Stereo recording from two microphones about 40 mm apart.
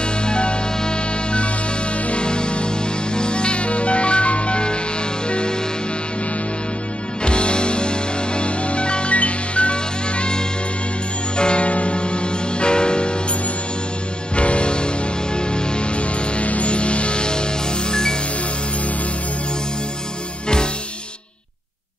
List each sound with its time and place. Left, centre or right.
0.0 s music: left
7.2 s music: left
14.3 s music: left